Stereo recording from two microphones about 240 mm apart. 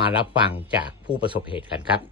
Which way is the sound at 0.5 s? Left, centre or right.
Centre.